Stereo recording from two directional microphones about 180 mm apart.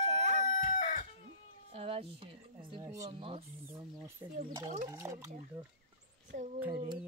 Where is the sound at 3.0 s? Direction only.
30° right (ahead or behind).